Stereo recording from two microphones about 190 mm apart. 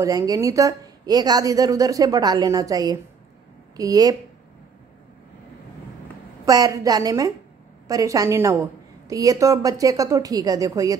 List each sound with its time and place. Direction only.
0.0 s a woman's voice: 15° right (ahead or behind)
6.4 s a woman's voice: 20° right (ahead or behind)